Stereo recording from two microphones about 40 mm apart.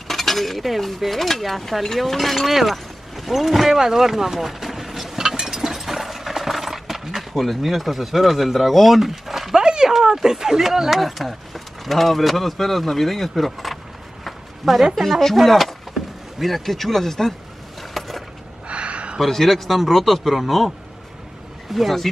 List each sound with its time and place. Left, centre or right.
0.1 s speech: centre
9.6 s speech: centre
14.2 s a sound: centre
15.0 s speech: centre
17.9 s coin: centre
18.7 s a sound: right
19.1 s speech: centre
21.7 s speech: centre